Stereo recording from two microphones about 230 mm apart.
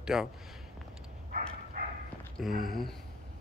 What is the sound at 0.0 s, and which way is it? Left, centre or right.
Speech, centre.